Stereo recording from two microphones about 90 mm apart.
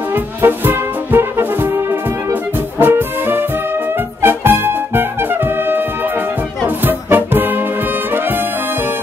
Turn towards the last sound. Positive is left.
turn(degrees=-20)  # may be behind; listen again after turning